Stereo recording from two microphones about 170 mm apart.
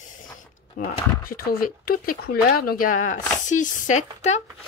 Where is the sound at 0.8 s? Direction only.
55° left (ahead or behind).